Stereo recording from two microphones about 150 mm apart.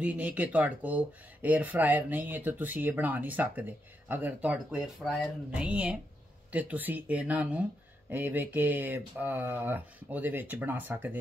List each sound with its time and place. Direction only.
0.0 s speech: 10° right (ahead or behind)